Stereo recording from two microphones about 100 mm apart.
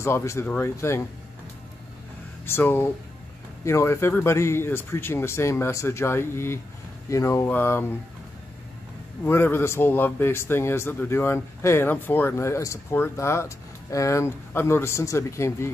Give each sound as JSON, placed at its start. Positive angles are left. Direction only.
{"t": 0.0, "sound": "speech", "side_deg": 30}
{"t": 2.4, "sound": "speech", "side_deg": 20}
{"t": 9.2, "sound": "speech", "side_deg": 25}